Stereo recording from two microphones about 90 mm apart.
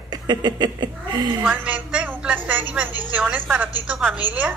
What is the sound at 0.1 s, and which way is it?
A woman's voice, 50° right (ahead or behind).